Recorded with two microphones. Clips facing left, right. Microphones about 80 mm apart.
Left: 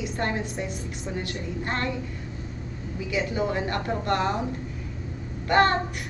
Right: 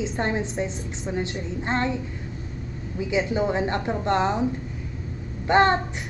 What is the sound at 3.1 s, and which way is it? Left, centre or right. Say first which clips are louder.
A woman's voice: right 3 dB; right.